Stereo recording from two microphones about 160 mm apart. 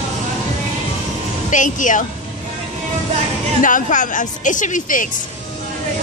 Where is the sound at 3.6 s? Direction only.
55° left (ahead or behind).